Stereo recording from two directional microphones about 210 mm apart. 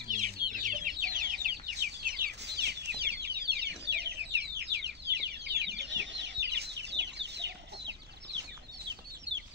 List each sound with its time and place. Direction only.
0.1 s chicken: 40° right (ahead or behind); by 7.9 s 55° right (ahead or behind)